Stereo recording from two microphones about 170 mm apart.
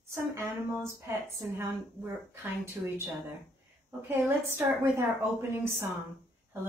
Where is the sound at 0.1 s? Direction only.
20° right (ahead or behind).